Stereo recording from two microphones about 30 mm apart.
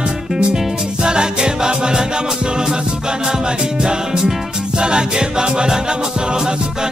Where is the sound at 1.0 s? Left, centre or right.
Right.